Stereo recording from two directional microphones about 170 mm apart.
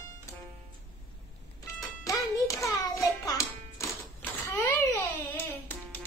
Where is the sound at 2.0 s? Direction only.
20° left (ahead or behind).